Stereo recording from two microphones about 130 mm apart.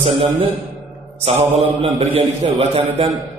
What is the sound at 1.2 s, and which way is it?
A man's voice, 50° right (ahead or behind).